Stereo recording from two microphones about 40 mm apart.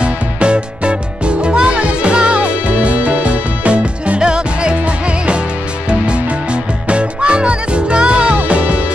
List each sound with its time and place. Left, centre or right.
0.0 s music: right